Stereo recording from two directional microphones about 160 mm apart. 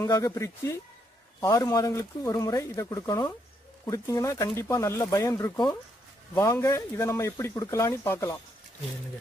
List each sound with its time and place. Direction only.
0.0 s speech: 20° left (ahead or behind)